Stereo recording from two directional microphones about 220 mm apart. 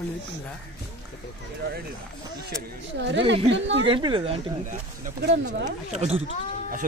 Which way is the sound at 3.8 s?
20° right (ahead or behind).